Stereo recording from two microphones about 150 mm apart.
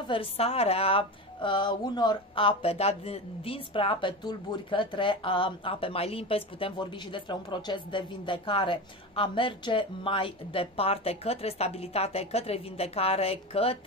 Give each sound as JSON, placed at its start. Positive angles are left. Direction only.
{"t": 0.1, "sound": "a woman's voice", "side_deg": 40}